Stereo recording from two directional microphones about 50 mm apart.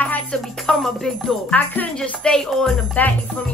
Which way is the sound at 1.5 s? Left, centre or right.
Left.